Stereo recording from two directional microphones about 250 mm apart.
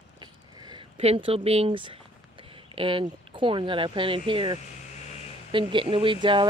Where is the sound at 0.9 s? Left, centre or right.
Right.